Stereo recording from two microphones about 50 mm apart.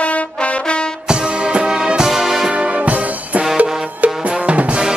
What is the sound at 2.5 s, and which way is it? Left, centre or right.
Music, right.